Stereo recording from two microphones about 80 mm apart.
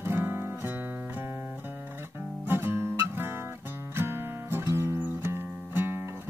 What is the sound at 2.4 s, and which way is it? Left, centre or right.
Guitar, right.